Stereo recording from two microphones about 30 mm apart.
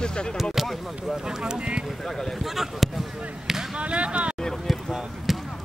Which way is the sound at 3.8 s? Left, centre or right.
Right.